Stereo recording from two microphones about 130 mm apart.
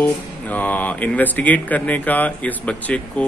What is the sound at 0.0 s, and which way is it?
A man's voice, 10° left (ahead or behind).